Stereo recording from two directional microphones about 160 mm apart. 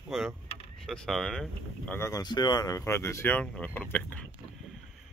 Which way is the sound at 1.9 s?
20° left (ahead or behind).